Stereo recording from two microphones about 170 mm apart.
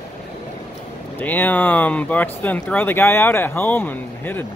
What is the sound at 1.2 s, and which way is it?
Speech, 10° left (ahead or behind).